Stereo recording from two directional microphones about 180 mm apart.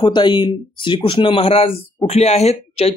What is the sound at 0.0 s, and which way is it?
Speech, 25° left (ahead or behind).